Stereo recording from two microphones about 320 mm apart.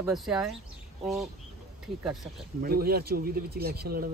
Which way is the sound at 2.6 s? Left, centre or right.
Right.